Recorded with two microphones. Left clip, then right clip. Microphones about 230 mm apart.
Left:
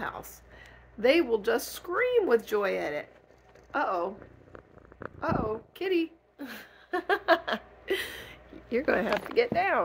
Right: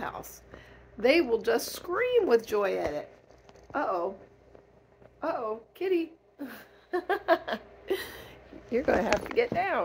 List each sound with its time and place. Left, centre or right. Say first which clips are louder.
0.0 s speech: left 1 dB; centre
5.2 s a woman's voice: left 1 dB; centre